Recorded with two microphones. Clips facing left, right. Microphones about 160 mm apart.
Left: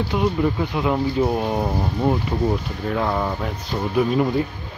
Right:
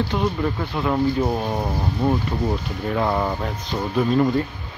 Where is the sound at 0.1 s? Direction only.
5° left (ahead or behind).